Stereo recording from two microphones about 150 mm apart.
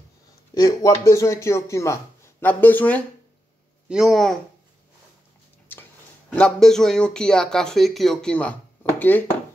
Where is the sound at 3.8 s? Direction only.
5° right (ahead or behind).